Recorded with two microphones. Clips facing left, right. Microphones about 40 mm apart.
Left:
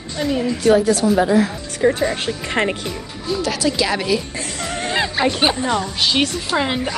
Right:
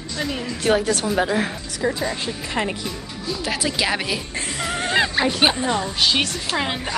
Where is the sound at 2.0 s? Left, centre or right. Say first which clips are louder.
Left 5 dB; left.